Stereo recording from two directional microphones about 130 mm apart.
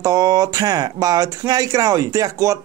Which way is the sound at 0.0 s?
25° right (ahead or behind).